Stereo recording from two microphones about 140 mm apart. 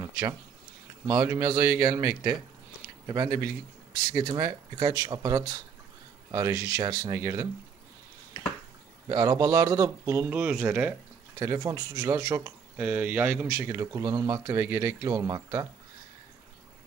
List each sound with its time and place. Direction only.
1.0 s speech: 30° right (ahead or behind)
9.1 s speech: 25° right (ahead or behind)
11.3 s speech: 20° right (ahead or behind)